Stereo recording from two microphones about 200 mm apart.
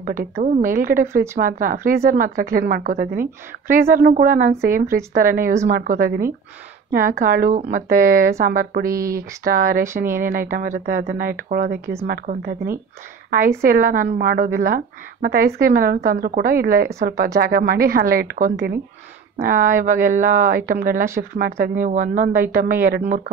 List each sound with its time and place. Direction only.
0.0 s speech: 45° right (ahead or behind)
8.8 s speech: 15° right (ahead or behind)
9.4 s speech: 45° right (ahead or behind)
11.8 s speech: 15° right (ahead or behind)
12.1 s speech: 45° right (ahead or behind)
13.6 s speech: 45° right (ahead or behind)